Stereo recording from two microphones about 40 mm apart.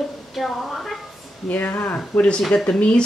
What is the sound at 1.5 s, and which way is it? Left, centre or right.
Speech, left.